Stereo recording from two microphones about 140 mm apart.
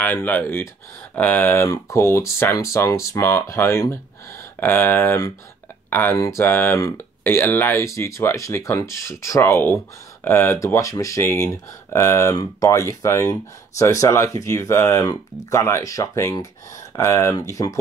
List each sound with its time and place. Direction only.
0.0 s speech: 15° left (ahead or behind)